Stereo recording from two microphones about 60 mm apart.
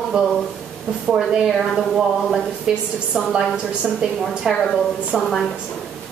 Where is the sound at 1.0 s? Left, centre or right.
Centre.